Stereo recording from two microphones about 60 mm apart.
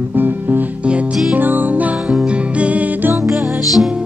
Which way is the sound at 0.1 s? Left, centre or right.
Right.